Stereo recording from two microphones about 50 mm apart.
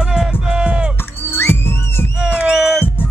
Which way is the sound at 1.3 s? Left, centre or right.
Left.